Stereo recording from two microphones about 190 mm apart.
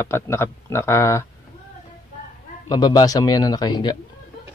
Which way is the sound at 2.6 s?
20° left (ahead or behind).